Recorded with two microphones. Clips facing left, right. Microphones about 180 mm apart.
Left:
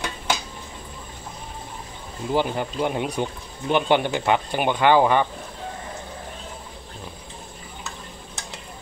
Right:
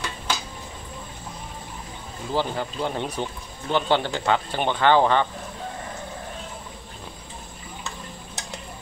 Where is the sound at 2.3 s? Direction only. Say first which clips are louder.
Left 3 dB; 15° left (ahead or behind).